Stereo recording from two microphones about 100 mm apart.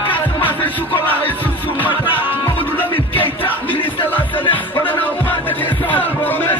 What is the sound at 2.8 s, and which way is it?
Music, 20° left (ahead or behind).